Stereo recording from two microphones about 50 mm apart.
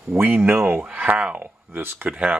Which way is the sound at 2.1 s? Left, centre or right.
Right.